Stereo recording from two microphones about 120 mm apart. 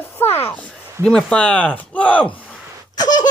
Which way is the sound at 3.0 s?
35° left (ahead or behind).